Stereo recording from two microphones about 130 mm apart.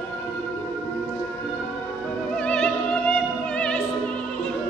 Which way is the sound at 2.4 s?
10° left (ahead or behind).